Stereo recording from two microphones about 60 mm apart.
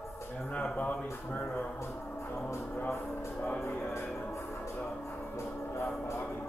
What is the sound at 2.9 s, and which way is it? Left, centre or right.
Speech, left.